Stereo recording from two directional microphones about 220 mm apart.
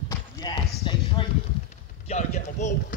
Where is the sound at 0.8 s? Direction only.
20° left (ahead or behind).